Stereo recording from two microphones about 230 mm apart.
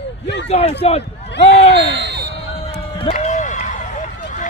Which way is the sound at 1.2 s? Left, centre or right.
Left.